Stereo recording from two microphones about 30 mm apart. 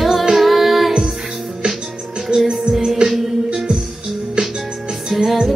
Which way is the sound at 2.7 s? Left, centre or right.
Centre.